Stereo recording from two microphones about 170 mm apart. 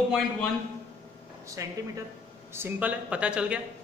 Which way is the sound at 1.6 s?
20° right (ahead or behind).